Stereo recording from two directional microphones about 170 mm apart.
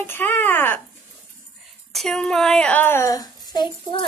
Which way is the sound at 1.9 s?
Centre (ahead or behind).